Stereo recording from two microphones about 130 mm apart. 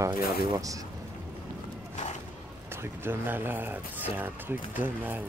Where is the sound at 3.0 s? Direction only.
15° right (ahead or behind).